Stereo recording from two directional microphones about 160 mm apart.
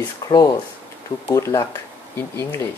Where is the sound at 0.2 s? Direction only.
20° left (ahead or behind).